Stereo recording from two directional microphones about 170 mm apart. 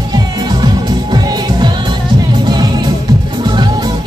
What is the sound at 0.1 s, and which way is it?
Music, 25° right (ahead or behind).